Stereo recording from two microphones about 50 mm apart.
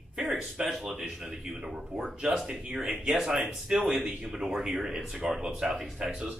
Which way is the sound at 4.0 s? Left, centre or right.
Centre.